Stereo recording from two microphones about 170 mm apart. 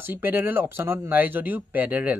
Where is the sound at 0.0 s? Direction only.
10° right (ahead or behind).